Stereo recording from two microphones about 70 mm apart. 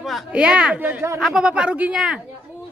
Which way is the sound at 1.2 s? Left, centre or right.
Centre.